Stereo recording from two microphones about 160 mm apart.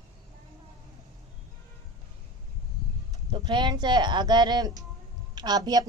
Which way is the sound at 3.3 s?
30° right (ahead or behind).